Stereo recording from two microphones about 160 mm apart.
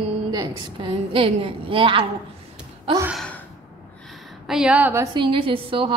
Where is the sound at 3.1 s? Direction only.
5° left (ahead or behind).